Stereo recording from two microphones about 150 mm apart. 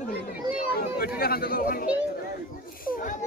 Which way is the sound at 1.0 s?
90° left.